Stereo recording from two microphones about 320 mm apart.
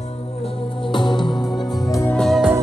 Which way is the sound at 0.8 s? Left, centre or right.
Centre.